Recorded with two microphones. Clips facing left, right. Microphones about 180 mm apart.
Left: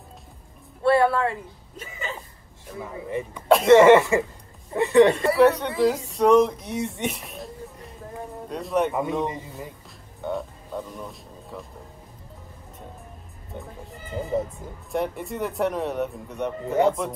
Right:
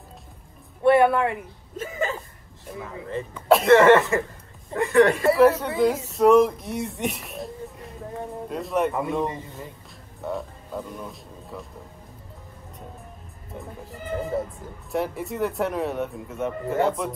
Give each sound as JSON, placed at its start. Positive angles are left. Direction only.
{"t": 0.8, "sound": "speech", "side_deg": -20}
{"t": 1.8, "sound": "speech", "side_deg": -45}
{"t": 2.8, "sound": "speech", "side_deg": 20}
{"t": 3.4, "sound": "speech", "side_deg": 0}
{"t": 3.7, "sound": "speech", "side_deg": 20}
{"t": 5.1, "sound": "speech", "side_deg": 0}
{"t": 13.5, "sound": "speech", "side_deg": 0}